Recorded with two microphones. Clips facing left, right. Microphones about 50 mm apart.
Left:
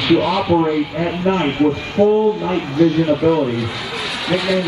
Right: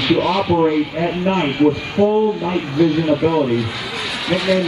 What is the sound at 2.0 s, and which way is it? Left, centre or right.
Speech, right.